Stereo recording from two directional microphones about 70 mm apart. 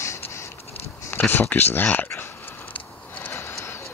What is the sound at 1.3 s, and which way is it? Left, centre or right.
Speech, left.